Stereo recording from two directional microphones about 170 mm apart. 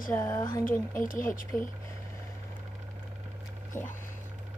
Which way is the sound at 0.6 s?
55° left (ahead or behind).